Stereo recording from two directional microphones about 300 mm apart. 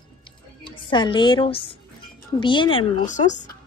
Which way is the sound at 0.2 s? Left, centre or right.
Centre.